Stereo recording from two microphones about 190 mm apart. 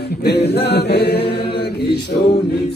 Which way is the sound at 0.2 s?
60° left (ahead or behind).